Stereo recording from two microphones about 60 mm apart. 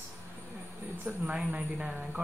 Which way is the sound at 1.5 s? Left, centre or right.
Right.